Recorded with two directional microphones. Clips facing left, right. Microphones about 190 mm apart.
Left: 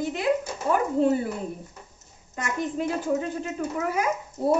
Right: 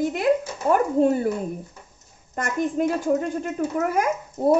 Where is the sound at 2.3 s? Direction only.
50° right (ahead or behind).